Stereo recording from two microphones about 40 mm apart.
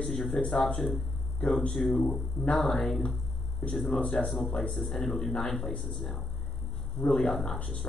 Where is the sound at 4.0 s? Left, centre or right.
Left.